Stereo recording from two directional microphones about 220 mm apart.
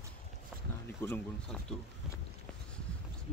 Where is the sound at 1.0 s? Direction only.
5° left (ahead or behind).